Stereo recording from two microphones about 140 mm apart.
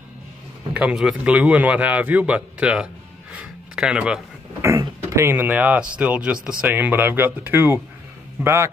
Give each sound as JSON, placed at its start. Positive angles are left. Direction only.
{"t": 0.7, "sound": "speech", "side_deg": -5}
{"t": 3.3, "sound": "a sound", "side_deg": -5}
{"t": 4.6, "sound": "a man's voice", "side_deg": -20}